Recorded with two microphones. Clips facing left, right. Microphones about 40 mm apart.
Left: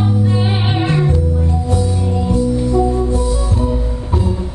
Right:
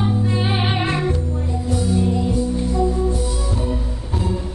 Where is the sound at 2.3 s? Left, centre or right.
Left.